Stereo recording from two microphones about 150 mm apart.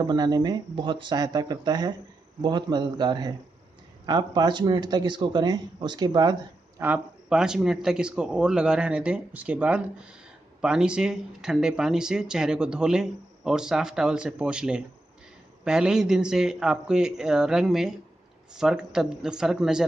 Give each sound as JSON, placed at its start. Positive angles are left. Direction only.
{"t": 0.0, "sound": "speech", "side_deg": -25}
{"t": 6.8, "sound": "speech", "side_deg": -10}